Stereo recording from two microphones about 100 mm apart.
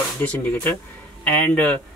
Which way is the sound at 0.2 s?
15° left (ahead or behind).